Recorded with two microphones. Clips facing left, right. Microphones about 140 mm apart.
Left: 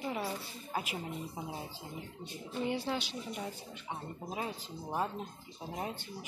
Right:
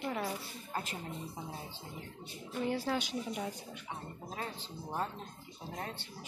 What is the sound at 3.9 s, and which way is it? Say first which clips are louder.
Speech: left 4 dB; 15° left (ahead or behind).